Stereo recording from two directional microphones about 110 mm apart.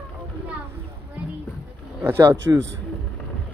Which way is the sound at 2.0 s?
25° right (ahead or behind).